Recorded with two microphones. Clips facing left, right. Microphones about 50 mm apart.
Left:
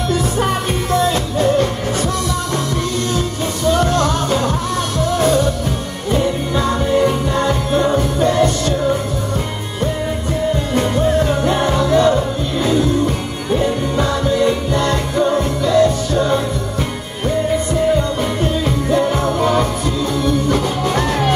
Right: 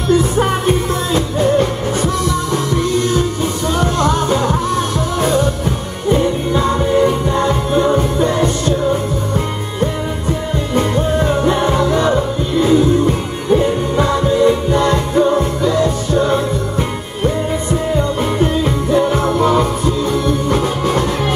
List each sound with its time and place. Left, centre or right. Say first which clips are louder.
0.2 s music: right 3 dB; right
3.8 s music: right 1 dB; right
6.6 s music: right 1 dB; centre
10.8 s music: right 1 dB; centre
14.2 s music: right 3 dB; centre
14.7 s music: right 3 dB; right
18.4 s music: right 2 dB; centre